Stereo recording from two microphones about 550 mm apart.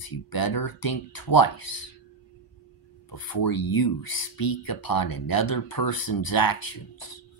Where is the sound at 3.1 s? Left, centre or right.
Left.